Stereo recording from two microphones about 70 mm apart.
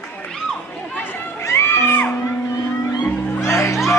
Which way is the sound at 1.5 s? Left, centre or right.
Left.